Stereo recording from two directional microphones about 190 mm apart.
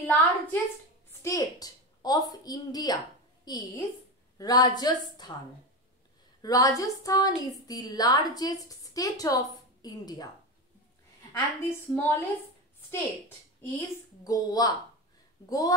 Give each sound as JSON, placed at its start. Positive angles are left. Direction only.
{"t": 0.0, "sound": "a woman's voice", "side_deg": 10}
{"t": 6.4, "sound": "a woman's voice", "side_deg": 20}
{"t": 11.3, "sound": "a woman's voice", "side_deg": 10}
{"t": 13.6, "sound": "a woman's voice", "side_deg": 15}